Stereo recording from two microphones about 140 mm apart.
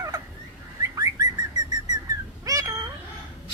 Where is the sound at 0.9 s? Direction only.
25° right (ahead or behind).